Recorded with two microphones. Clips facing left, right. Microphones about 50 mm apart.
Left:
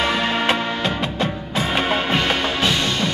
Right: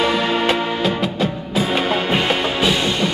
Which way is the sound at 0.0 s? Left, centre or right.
Centre.